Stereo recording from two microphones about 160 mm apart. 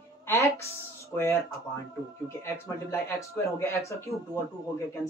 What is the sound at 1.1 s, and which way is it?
Speech, 20° left (ahead or behind).